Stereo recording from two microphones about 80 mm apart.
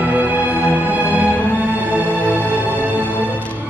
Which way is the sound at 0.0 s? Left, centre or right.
Right.